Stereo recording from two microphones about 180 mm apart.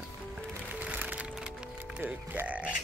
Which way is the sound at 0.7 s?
5° right (ahead or behind).